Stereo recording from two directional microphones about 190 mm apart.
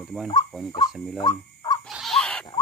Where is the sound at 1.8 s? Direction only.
Centre (ahead or behind).